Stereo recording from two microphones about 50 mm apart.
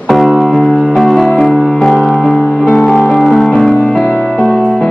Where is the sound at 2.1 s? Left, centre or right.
Centre.